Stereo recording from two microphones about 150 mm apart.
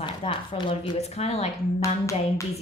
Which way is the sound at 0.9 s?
45° left (ahead or behind).